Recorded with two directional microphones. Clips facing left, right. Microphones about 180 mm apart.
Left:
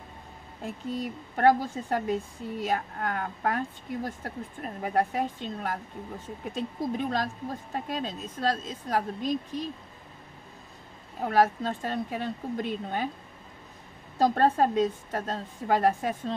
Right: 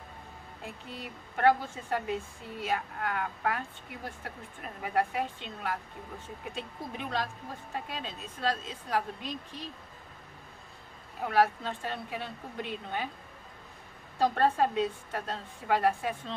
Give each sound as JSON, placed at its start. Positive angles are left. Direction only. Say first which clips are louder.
{"t": 0.8, "sound": "speech", "louder": "left 10 dB", "side_deg": 40}
{"t": 11.1, "sound": "speech", "louder": "left 3 dB", "side_deg": 40}
{"t": 14.1, "sound": "a woman's voice", "louder": "left 3 dB", "side_deg": 40}